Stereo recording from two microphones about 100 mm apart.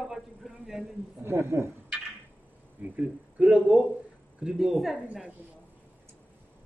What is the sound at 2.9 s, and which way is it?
Speech, 15° right (ahead or behind).